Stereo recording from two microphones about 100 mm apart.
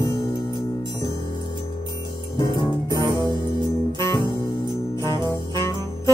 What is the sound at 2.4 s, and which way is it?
Music, 40° left (ahead or behind).